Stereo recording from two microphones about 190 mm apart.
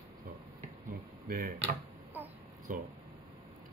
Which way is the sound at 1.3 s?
50° right (ahead or behind).